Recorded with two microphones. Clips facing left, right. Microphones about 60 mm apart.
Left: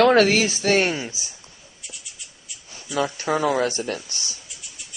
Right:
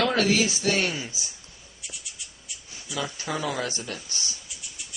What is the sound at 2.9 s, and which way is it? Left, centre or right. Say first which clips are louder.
Speech: left 8 dB; left.